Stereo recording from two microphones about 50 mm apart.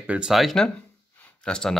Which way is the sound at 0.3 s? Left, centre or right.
Centre.